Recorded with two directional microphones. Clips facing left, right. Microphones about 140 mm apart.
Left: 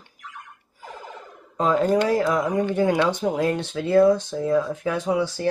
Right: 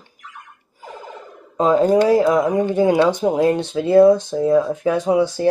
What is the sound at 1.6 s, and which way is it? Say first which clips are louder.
Speech: right 5 dB; 15° right (ahead or behind).